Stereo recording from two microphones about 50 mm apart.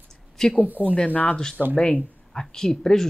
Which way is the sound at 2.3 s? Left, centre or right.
Centre.